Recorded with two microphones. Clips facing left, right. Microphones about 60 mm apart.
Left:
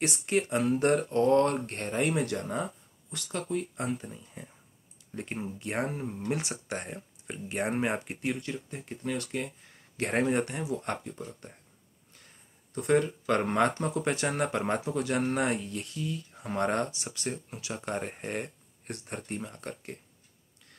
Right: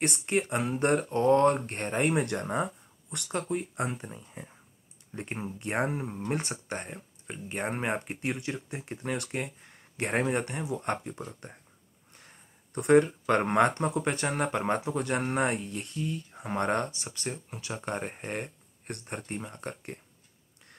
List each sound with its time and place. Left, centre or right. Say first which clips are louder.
0.3 s speech: left 3 dB; centre
3.3 s speech: right 1 dB; centre
5.1 s speech: even; centre
5.9 s speech: right 1 dB; centre
6.3 s speech: right 2 dB; centre
9.4 s speech: right 1 dB; right
9.9 s speech: left 1 dB; centre
10.8 s speech: right 2 dB; centre
12.7 s speech: right 4 dB; centre
17.0 s speech: left 1 dB; centre